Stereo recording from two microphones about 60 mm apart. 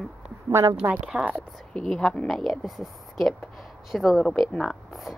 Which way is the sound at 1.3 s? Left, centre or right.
Centre.